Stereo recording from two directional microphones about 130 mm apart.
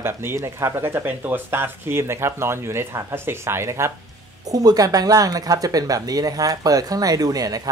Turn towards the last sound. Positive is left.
turn(degrees=-30)  # may be behind; listen again after turning